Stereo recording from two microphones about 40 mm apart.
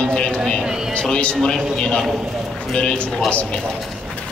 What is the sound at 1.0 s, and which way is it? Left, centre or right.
A woman's voice, left.